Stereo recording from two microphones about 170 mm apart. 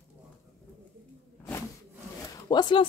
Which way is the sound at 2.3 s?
25° left (ahead or behind).